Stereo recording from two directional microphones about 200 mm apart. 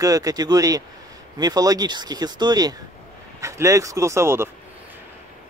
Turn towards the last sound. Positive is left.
turn(degrees=-10)  # may be behind; listen again after turning